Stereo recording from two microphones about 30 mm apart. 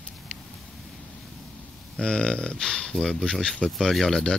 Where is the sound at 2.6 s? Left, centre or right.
Centre.